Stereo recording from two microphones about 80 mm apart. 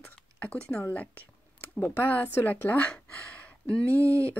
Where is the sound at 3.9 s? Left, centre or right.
Right.